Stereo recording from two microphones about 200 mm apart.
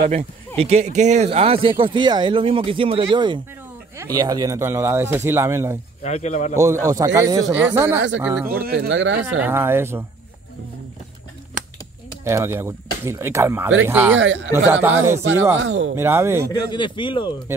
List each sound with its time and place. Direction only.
0.6 s speech: 35° right (ahead or behind); by 5.8 s 15° right (ahead or behind)
6.0 s a man's voice: 35° left (ahead or behind)
6.5 s speech: 15° right (ahead or behind)
8.5 s speech: 50° right (ahead or behind)
8.8 s speech: 70° right (ahead or behind)
9.4 s speech: 10° right (ahead or behind)
12.3 s speech: 15° right (ahead or behind)
14.1 s speech: 70° right (ahead or behind)
14.5 s speech: 10° right (ahead or behind)
15.6 s speech: 75° right (ahead or behind)
15.9 s speech: 15° right (ahead or behind)
16.4 s speech: 20° left (ahead or behind)